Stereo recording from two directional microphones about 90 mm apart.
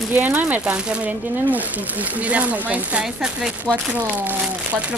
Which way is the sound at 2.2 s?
15° right (ahead or behind).